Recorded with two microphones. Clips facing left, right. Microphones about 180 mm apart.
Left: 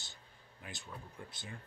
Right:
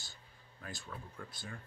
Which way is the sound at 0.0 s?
20° left (ahead or behind).